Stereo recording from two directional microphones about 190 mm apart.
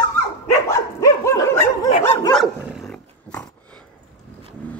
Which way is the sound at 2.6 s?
Centre (ahead or behind).